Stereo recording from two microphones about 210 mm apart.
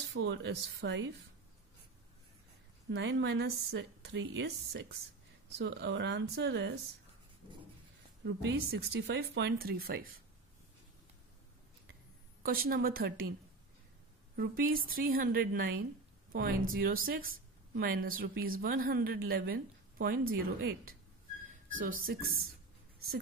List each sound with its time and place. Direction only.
0.1 s a woman's voice: 55° right (ahead or behind)
2.9 s a woman's voice: 55° right (ahead or behind)
8.2 s speech: 55° right (ahead or behind)
12.4 s speech: 45° right (ahead or behind)
14.3 s speech: 45° right (ahead or behind)
21.5 s whistling: 65° right (ahead or behind)
22.0 s speech: 45° right (ahead or behind)